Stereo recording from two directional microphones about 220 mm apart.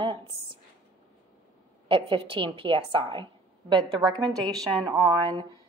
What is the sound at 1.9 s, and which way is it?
A woman's voice, 25° right (ahead or behind).